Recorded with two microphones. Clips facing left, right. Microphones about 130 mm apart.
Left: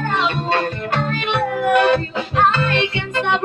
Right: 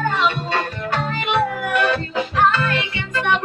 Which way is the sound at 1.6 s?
25° left (ahead or behind).